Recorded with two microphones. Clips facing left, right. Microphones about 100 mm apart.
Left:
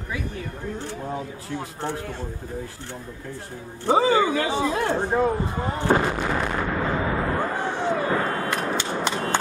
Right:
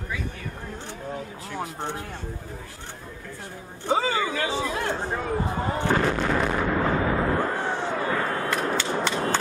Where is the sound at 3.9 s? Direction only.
30° left (ahead or behind).